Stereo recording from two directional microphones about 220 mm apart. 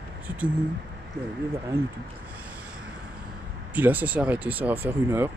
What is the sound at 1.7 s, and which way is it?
Speech, 45° right (ahead or behind).